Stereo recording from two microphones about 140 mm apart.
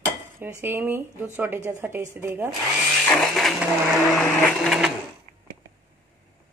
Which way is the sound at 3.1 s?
5° left (ahead or behind).